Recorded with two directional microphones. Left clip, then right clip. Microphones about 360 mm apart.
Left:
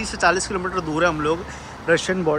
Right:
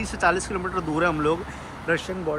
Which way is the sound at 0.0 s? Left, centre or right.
Centre.